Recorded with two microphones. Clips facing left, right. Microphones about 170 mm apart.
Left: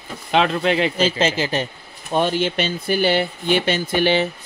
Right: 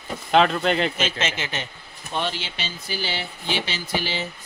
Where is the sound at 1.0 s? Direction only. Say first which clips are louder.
Left 8 dB; 35° left (ahead or behind).